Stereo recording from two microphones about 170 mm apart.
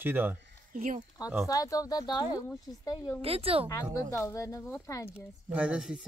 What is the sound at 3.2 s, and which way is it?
Speech, 35° right (ahead or behind).